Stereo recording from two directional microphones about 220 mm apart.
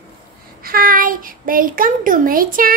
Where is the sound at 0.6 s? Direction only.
40° right (ahead or behind).